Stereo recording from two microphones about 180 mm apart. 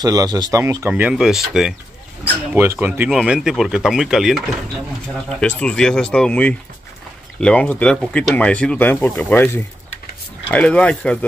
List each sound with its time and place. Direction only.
0.0 s speech: 20° right (ahead or behind); by 11.2 s 5° left (ahead or behind)